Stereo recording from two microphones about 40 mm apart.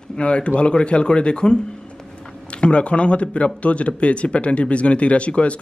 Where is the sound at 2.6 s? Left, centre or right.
Left.